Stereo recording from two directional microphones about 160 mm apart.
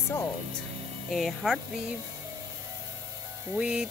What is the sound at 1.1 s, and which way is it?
Speech, centre (ahead or behind).